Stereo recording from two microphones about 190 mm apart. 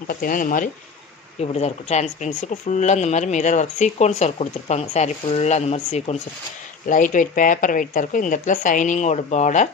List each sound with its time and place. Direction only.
0.1 s speech: 45° left (ahead or behind)
1.4 s speech: 35° left (ahead or behind)